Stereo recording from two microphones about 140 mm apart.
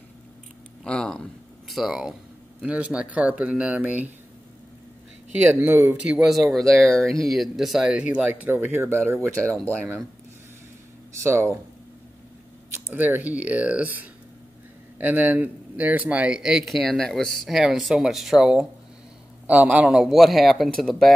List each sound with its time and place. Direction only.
0.8 s speech: 5° left (ahead or behind); by 4.1 s 10° right (ahead or behind)
5.3 s speech: 15° right (ahead or behind)
11.1 s speech: 20° right (ahead or behind)
12.7 s speech: 15° right (ahead or behind); by 21.1 s 5° left (ahead or behind)